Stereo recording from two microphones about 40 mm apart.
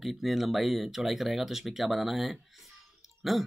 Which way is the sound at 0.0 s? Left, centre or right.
Centre.